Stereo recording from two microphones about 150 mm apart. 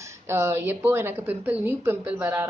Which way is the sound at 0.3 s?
15° right (ahead or behind).